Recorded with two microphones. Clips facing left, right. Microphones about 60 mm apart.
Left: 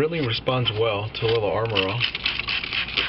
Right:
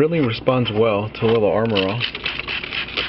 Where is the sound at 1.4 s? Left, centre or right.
Centre.